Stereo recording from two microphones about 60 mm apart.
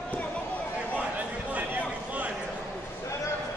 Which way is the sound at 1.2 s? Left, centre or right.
Right.